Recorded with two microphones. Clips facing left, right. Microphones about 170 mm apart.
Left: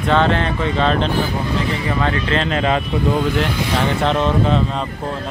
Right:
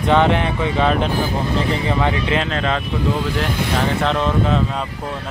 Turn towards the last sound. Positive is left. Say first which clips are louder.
# left 1 dB
turn(degrees=0)  # may be behind; listen again after turning